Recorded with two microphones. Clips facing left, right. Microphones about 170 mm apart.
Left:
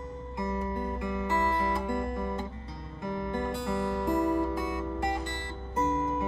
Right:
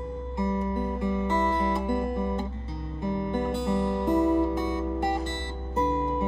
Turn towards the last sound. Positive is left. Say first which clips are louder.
# right 2 dB
turn(degrees=-30)  # may be behind; listen again after turning